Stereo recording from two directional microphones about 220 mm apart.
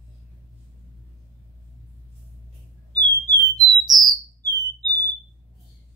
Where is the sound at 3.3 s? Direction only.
20° right (ahead or behind).